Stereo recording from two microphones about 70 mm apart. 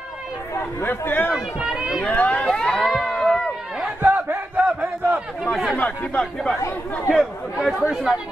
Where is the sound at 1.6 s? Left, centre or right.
Centre.